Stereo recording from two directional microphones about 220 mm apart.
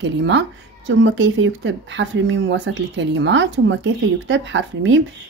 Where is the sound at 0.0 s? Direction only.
55° right (ahead or behind).